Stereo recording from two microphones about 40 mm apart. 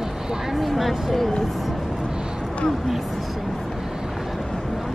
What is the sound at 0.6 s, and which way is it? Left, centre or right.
Speech, centre.